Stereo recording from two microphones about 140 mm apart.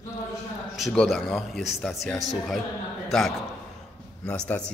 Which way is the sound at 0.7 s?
Centre (ahead or behind).